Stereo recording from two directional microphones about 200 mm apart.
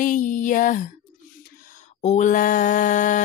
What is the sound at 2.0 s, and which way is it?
Mantra, 40° left (ahead or behind).